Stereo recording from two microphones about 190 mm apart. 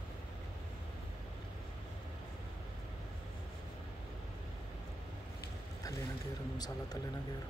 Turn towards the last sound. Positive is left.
turn(degrees=20)  # may be behind; listen again after turning